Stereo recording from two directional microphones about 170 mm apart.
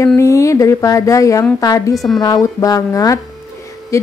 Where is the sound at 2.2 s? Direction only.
20° left (ahead or behind).